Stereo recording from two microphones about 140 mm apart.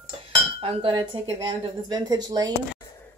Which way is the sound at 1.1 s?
40° right (ahead or behind).